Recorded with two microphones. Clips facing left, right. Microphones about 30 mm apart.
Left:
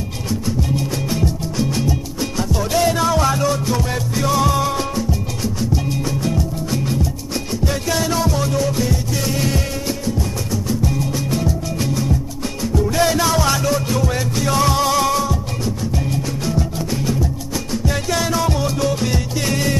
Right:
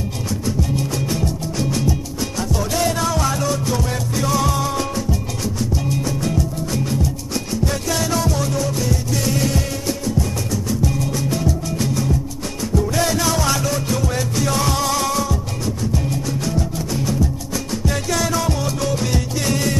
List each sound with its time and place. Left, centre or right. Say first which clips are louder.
0.6 s music: left 1 dB; centre